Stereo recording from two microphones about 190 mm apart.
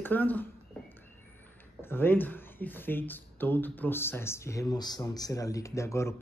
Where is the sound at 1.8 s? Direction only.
10° left (ahead or behind).